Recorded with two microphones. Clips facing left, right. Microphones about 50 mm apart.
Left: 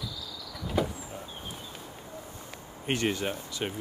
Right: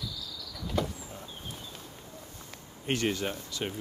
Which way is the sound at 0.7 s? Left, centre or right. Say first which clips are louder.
Left 2 dB; centre.